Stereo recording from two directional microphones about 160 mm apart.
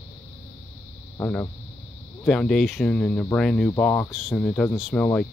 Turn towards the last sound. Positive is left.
turn(degrees=10)  # may be behind; listen again after turning